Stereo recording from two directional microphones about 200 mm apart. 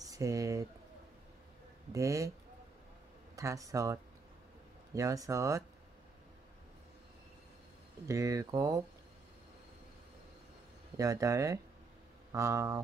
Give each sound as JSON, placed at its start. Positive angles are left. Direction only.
{"t": 0.0, "sound": "speech", "side_deg": -15}
{"t": 1.9, "sound": "speech", "side_deg": -15}
{"t": 3.3, "sound": "speech", "side_deg": -15}
{"t": 8.1, "sound": "speech", "side_deg": -15}
{"t": 11.0, "sound": "speech", "side_deg": -15}